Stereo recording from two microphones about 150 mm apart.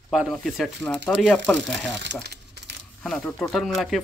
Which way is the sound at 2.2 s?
90° right.